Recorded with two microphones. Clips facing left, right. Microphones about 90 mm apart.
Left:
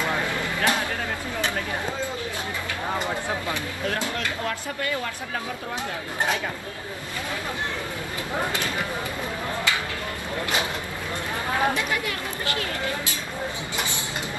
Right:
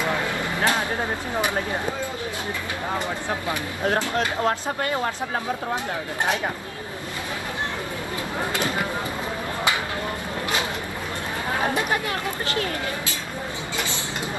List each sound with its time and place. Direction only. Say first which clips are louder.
0.0 s a sound: right 1 dB; 20° right (ahead or behind)
4.1 s speech: right 6 dB; 30° right (ahead or behind)
11.6 s speech: right 2 dB; 30° right (ahead or behind)